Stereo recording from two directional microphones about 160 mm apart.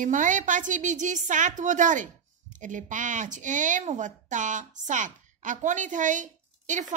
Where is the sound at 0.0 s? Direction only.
50° right (ahead or behind).